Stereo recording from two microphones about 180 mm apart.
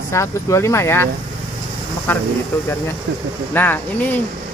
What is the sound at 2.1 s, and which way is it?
Speech, 10° left (ahead or behind).